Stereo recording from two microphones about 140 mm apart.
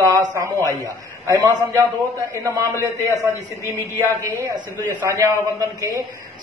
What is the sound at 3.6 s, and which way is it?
A man's voice, 20° right (ahead or behind).